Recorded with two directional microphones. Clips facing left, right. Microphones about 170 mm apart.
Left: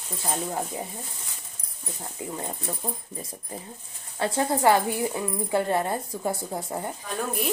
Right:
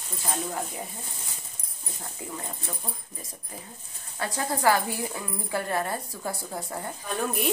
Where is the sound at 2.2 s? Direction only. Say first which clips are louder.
Left 4 dB; 20° left (ahead or behind).